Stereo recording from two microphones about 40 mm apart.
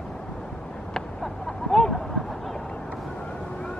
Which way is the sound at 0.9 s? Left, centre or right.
Centre.